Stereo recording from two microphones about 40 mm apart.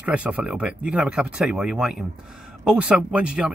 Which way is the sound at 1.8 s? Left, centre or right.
Centre.